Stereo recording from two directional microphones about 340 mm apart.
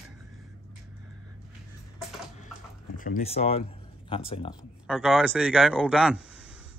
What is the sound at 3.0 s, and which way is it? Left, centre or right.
Speech, left.